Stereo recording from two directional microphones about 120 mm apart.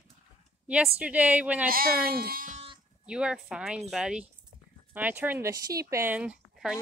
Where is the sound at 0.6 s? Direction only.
10° right (ahead or behind).